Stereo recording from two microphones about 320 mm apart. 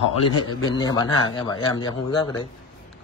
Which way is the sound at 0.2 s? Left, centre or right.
Left.